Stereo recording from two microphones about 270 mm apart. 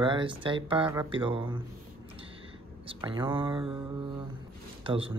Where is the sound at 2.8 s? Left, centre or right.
Centre.